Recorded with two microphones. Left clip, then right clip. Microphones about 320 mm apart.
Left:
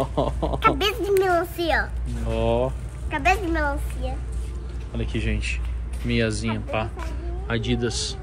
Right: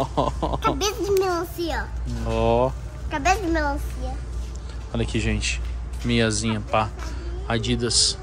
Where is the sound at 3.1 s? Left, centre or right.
Right.